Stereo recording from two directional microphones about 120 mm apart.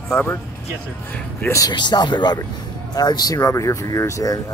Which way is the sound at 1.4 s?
25° left (ahead or behind).